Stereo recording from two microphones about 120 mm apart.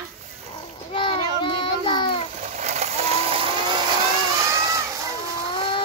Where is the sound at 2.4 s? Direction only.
75° right (ahead or behind); by 3.8 s 45° right (ahead or behind).